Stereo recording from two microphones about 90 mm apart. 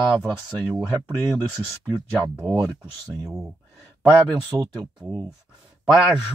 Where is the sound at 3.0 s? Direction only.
35° right (ahead or behind).